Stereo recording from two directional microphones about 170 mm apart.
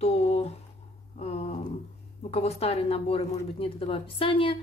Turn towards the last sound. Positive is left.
turn(degrees=30)  # may be behind; listen again after turning